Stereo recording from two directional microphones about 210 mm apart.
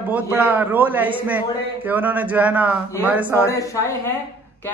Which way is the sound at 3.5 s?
15° left (ahead or behind).